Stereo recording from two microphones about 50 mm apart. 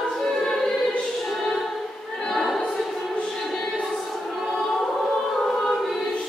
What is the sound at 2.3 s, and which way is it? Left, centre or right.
Choir, centre.